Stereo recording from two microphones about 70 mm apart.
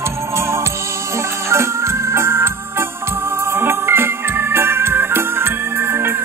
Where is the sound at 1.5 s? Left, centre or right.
Right.